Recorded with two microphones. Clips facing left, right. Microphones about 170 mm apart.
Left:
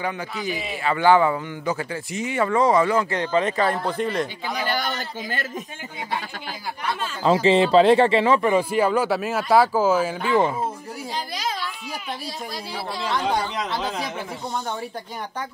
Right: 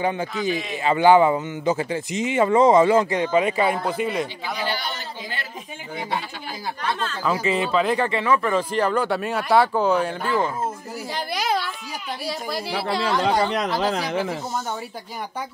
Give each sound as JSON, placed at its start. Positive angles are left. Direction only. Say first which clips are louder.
{"t": 0.0, "sound": "speech", "louder": "right 4 dB", "side_deg": -25}
{"t": 4.6, "sound": "a sound", "louder": "left 2 dB", "side_deg": 50}
{"t": 6.8, "sound": "speech", "louder": "right 1 dB", "side_deg": 10}
{"t": 7.2, "sound": "speech", "louder": "left 6 dB", "side_deg": 25}
{"t": 11.2, "sound": "a sound", "louder": "right 5 dB", "side_deg": -65}
{"t": 12.3, "sound": "speech", "louder": "right 5 dB", "side_deg": -70}